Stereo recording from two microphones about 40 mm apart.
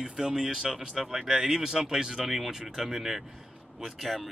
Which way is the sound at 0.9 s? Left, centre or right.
Centre.